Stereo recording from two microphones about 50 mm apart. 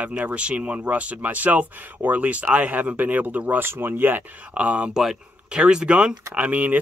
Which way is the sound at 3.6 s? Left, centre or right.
Right.